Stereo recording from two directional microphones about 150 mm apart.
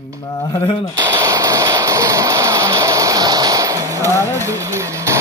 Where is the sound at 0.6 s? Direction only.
45° left (ahead or behind).